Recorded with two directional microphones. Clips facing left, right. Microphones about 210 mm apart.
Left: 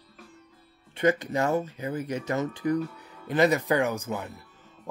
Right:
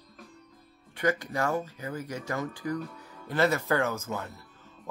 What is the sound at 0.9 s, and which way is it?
Speech, 20° left (ahead or behind).